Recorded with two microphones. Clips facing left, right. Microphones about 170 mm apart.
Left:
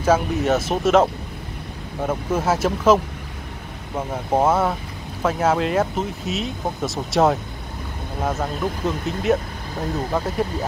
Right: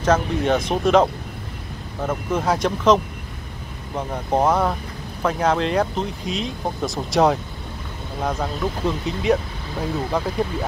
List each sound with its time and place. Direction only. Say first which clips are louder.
0.0 s speech: left 1 dB; 5° left (ahead or behind)
2.0 s speech: left 1 dB; 5° left (ahead or behind)
4.3 s speech: even; 5° left (ahead or behind)